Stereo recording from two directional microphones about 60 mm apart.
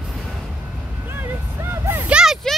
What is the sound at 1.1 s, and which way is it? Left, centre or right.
Vehicle, right.